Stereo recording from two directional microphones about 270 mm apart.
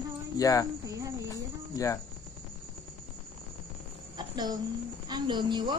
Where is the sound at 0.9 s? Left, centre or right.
Centre.